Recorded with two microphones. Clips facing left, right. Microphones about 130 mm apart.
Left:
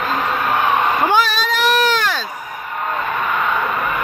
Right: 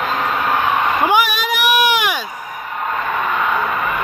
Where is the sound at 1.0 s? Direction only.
15° right (ahead or behind).